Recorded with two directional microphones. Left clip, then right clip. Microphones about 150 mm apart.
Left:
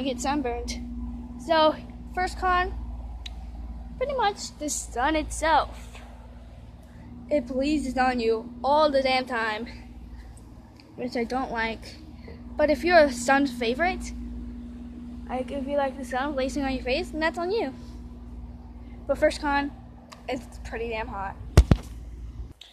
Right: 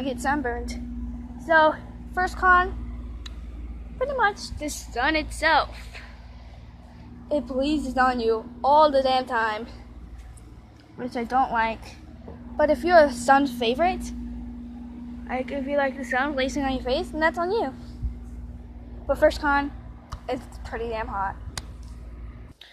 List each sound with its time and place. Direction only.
0.0 s a woman's voice: 10° left (ahead or behind)
2.1 s a woman's voice: 5° left (ahead or behind)
4.2 s a woman's voice: 20° left (ahead or behind)
7.2 s a woman's voice: 5° left (ahead or behind)
11.1 s a woman's voice: 10° left (ahead or behind)
13.4 s a woman's voice: centre (ahead or behind)
15.2 s a woman's voice: centre (ahead or behind)
19.0 s a woman's voice: centre (ahead or behind)